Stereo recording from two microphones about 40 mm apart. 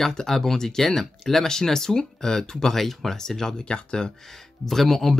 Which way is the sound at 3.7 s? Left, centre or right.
Left.